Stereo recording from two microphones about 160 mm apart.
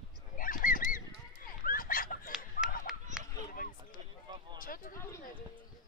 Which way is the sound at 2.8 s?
5° right (ahead or behind).